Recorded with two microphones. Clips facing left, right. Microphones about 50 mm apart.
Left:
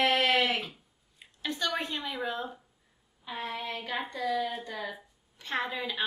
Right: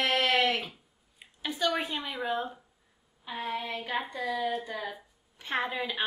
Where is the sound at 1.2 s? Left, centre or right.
Centre.